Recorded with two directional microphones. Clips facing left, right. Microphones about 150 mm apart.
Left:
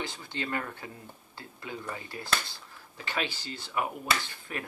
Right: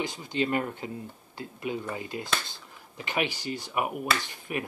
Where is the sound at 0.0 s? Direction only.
15° right (ahead or behind).